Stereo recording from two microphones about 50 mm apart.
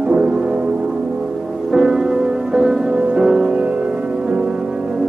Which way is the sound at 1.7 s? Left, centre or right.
Centre.